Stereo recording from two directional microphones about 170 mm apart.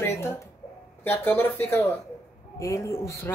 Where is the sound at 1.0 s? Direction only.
10° left (ahead or behind).